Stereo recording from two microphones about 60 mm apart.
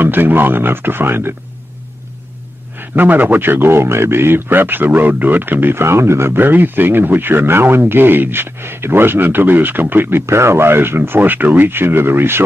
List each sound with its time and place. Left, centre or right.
0.0 s speech: right
2.8 s speech: right